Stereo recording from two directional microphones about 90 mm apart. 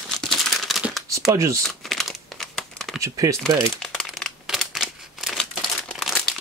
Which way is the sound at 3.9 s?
5° left (ahead or behind).